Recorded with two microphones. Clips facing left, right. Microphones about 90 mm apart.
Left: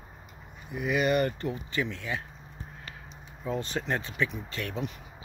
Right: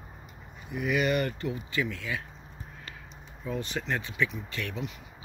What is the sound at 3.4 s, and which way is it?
Speech, 30° left (ahead or behind).